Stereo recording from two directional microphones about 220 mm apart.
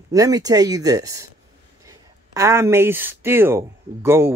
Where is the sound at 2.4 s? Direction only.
10° right (ahead or behind).